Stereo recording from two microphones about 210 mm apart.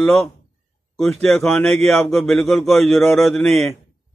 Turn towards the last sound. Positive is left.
turn(degrees=5)  # may be behind; listen again after turning